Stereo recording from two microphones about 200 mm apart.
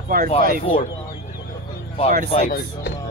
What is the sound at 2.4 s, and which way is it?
Speech, 55° left (ahead or behind).